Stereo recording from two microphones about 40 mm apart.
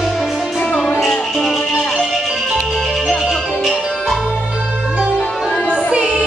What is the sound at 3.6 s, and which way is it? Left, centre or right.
Music, centre.